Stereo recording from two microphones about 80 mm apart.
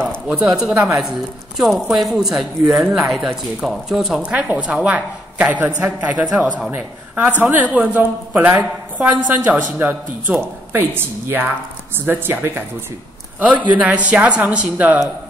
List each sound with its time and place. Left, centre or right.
0.3 s speech: centre
4.3 s a woman's voice: centre